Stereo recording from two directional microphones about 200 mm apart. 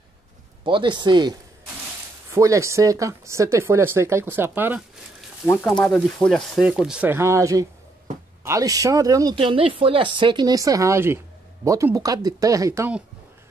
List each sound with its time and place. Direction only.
0.7 s speech: 25° right (ahead or behind)
2.3 s speech: 15° right (ahead or behind)
5.5 s speech: 5° left (ahead or behind); by 13.0 s 10° right (ahead or behind)